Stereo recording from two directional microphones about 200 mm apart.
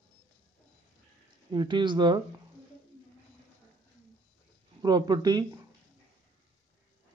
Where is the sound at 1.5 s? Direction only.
20° right (ahead or behind).